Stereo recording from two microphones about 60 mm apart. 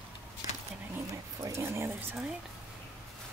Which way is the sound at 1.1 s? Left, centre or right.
Right.